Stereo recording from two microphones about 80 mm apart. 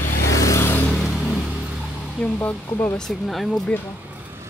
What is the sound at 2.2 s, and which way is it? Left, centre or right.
Speech, centre.